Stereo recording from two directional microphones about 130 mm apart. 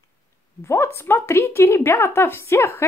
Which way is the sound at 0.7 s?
20° left (ahead or behind).